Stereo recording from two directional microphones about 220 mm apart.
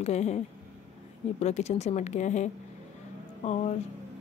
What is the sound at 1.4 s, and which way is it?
Speech, 30° left (ahead or behind).